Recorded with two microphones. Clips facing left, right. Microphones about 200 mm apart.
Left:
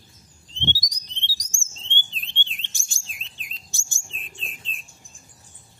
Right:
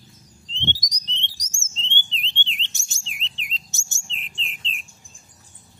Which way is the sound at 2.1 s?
20° right (ahead or behind).